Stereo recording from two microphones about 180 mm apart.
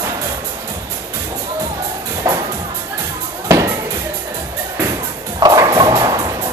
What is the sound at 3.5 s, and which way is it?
Music, 20° right (ahead or behind).